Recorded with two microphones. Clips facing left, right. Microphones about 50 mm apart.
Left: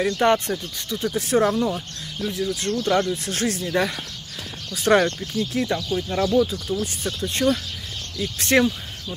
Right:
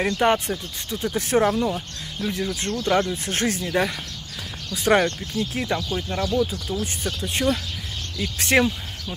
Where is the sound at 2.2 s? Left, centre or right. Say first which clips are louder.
Left 1 dB; right.